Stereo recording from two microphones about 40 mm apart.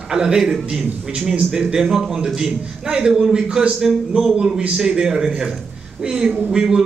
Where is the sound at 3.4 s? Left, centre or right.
Right.